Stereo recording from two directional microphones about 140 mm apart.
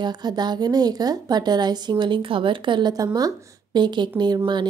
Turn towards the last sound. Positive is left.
turn(degrees=-35)  # may be behind; listen again after turning